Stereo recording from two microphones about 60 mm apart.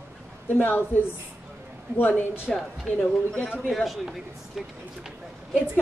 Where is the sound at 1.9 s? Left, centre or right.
Left.